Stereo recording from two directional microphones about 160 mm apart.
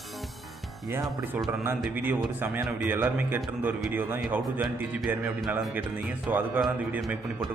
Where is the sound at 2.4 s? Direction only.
10° right (ahead or behind).